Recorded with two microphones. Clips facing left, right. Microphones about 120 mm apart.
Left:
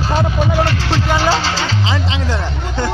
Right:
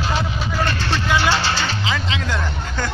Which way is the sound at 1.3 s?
90° left.